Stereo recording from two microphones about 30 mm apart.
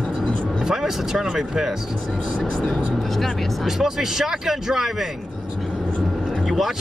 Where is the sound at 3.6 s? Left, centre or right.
Centre.